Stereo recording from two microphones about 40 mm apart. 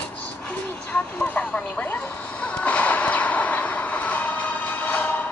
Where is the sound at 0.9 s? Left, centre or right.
Left.